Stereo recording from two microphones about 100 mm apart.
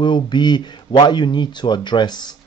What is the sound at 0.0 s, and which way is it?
Speech, 50° left (ahead or behind).